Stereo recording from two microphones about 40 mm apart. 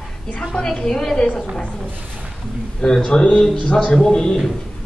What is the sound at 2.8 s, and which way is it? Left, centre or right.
A man's voice, centre.